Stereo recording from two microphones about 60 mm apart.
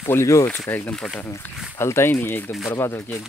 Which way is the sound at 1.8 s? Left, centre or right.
Left.